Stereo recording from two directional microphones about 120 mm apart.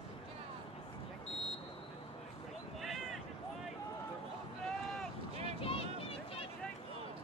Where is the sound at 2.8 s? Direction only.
Centre (ahead or behind).